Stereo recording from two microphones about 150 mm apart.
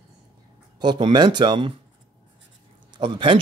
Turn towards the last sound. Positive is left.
turn(degrees=-35)  # may be behind; listen again after turning